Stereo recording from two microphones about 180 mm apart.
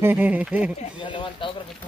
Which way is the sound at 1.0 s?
25° left (ahead or behind).